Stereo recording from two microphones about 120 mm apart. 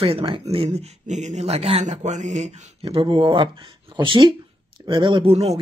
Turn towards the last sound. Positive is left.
turn(degrees=-45)  # may be behind; listen again after turning